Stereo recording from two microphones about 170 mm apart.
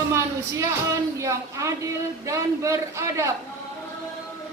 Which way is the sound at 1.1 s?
20° right (ahead or behind).